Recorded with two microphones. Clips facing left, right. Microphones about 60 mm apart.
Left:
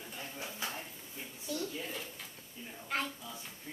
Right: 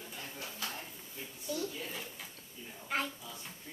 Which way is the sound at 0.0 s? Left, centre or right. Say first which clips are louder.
Left 1 dB; centre.